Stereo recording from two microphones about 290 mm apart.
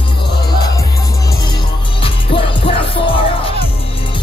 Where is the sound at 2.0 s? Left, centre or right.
Centre.